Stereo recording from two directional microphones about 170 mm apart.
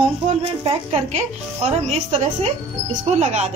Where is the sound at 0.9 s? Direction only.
40° right (ahead or behind).